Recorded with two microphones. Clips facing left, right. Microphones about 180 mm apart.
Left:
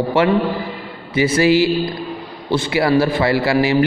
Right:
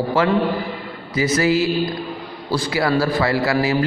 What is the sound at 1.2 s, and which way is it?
A man's voice, 30° left (ahead or behind).